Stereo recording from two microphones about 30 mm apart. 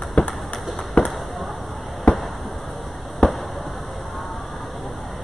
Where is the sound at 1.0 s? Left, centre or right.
Left.